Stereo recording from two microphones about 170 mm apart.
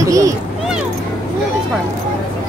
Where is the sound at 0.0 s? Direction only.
20° right (ahead or behind).